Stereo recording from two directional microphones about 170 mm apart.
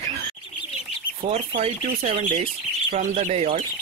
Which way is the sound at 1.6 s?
40° right (ahead or behind).